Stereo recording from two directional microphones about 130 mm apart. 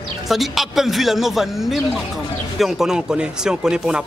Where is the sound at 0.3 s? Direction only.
Centre (ahead or behind).